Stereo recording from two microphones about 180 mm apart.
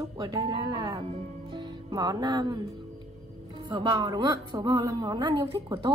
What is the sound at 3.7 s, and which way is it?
A woman's voice, 20° right (ahead or behind).